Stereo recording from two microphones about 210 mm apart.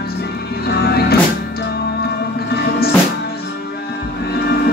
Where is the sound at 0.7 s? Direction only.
50° left (ahead or behind).